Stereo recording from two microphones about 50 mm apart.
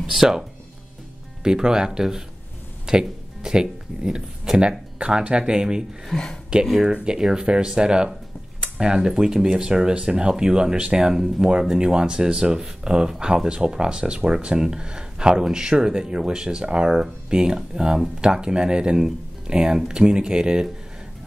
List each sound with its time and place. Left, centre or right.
0.0 s speech: centre
6.1 s speech: centre
6.5 s speech: centre